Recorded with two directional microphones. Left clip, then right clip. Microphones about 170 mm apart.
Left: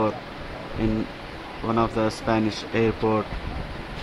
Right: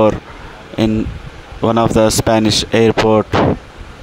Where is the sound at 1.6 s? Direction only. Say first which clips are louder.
Right 11 dB; 70° right (ahead or behind).